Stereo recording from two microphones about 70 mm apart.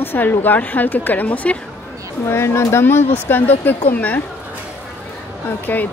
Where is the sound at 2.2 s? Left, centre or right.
Left.